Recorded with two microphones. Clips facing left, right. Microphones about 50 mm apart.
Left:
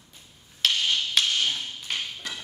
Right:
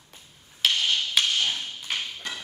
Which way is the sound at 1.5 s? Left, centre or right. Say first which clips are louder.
Right 1 dB; right.